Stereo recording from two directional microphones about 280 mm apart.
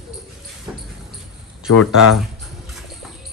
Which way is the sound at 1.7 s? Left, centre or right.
Left.